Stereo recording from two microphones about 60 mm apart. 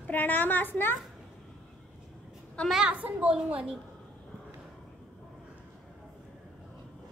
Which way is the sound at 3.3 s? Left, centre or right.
Centre.